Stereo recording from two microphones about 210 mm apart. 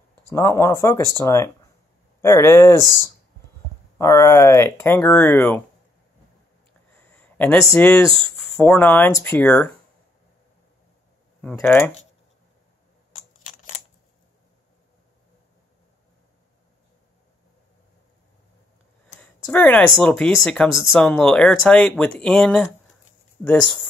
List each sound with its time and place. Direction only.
0.3 s speech: 15° left (ahead or behind)
2.8 s speech: 15° right (ahead or behind)
4.0 s speech: 15° left (ahead or behind)
7.0 s speech: 5° left (ahead or behind)
11.4 s speech: 10° left (ahead or behind)
19.2 s speech: 10° left (ahead or behind)